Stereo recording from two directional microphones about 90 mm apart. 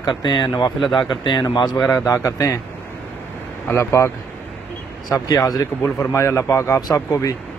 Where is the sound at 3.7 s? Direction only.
30° left (ahead or behind).